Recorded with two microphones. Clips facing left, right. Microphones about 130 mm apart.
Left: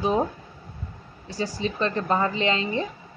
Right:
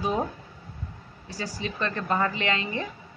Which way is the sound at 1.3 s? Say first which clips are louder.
Left 5 dB; 25° left (ahead or behind).